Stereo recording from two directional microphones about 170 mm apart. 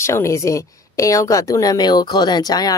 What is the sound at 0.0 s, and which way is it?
A woman's voice, 15° left (ahead or behind).